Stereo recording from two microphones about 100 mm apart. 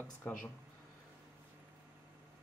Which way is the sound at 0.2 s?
20° left (ahead or behind).